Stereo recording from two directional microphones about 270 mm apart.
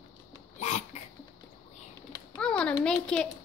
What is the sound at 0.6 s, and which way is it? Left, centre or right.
Cough, left.